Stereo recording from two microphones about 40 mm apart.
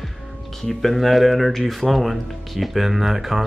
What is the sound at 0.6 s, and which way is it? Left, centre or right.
Speech, centre.